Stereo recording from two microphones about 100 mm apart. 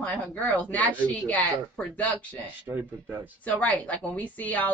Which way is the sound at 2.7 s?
20° right (ahead or behind).